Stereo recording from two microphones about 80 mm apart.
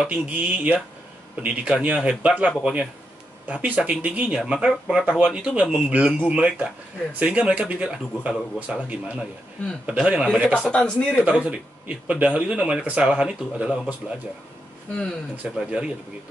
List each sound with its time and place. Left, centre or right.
0.0 s a man's voice: centre
10.7 s speech: centre
11.2 s a man's voice: centre
15.5 s a man's voice: centre